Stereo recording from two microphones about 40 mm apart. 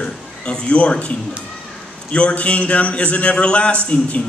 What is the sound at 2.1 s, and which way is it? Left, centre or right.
A man's voice, left.